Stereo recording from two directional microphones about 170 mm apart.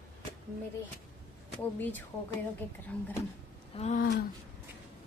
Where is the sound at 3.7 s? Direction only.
40° left (ahead or behind).